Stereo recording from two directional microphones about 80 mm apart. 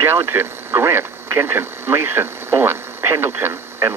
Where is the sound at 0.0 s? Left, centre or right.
Right.